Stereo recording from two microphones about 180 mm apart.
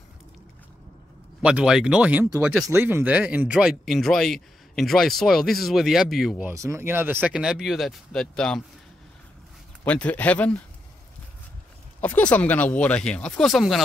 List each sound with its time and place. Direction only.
1.4 s speech: 5° right (ahead or behind)
6.5 s speech: 15° right (ahead or behind); by 8.6 s 5° left (ahead or behind)
9.8 s speech: 10° left (ahead or behind)
12.0 s speech: 10° left (ahead or behind)